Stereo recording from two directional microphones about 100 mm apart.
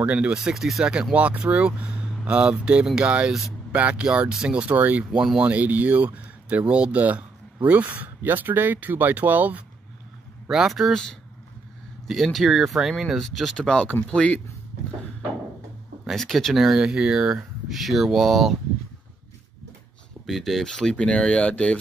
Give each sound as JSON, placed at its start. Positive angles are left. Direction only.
{"t": 0.0, "sound": "speech", "side_deg": -15}
{"t": 0.4, "sound": "speech", "side_deg": -5}
{"t": 10.5, "sound": "speech", "side_deg": -5}
{"t": 16.1, "sound": "speech", "side_deg": 0}
{"t": 20.2, "sound": "speech", "side_deg": 0}